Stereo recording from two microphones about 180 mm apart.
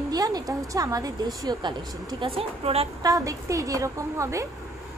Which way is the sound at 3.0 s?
20° right (ahead or behind).